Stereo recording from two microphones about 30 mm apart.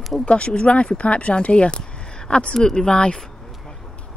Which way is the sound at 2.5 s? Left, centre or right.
Centre.